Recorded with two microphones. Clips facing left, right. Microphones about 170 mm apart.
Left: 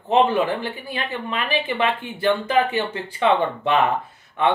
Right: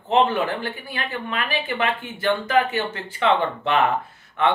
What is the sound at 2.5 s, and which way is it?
Speech, 20° left (ahead or behind).